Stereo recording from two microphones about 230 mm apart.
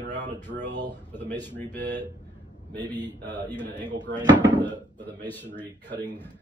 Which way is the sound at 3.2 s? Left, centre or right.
Right.